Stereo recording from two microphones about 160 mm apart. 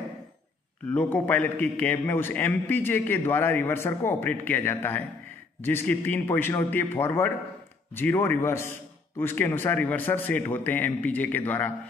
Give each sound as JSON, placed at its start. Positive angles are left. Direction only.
{"t": 0.9, "sound": "a man's voice", "side_deg": 10}